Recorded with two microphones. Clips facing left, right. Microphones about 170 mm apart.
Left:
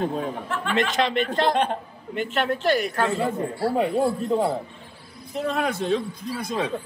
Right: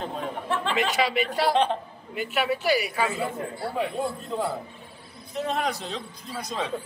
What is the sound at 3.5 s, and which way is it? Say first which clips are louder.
Speech: left 8 dB; 30° left (ahead or behind).